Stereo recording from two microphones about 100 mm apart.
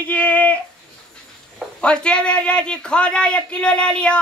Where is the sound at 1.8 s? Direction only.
10° left (ahead or behind).